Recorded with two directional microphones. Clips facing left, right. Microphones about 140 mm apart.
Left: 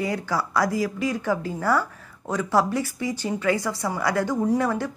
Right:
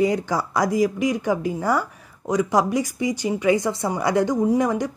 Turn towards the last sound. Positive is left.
turn(degrees=-15)  # may be behind; listen again after turning